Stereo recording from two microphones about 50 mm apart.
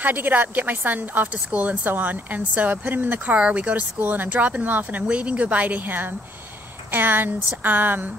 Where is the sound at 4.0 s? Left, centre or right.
Right.